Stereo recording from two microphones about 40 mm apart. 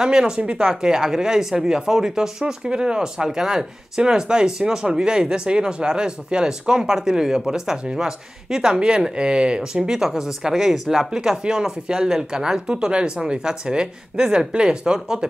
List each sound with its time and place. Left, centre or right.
0.0 s speech: centre
0.4 s speech: right